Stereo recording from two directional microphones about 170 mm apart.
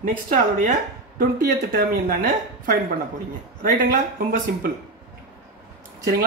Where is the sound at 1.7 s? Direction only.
60° right (ahead or behind).